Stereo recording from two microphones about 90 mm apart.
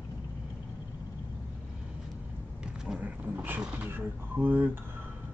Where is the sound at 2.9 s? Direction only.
15° right (ahead or behind).